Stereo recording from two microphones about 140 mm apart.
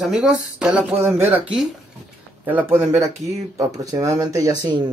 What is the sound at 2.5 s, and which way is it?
Speech, 15° right (ahead or behind).